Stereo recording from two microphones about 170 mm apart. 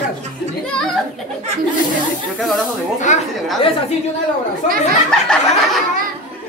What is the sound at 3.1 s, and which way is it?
Speech, 45° left (ahead or behind).